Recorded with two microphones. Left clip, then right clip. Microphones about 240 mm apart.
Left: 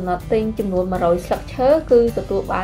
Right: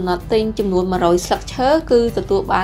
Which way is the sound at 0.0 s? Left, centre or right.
Right.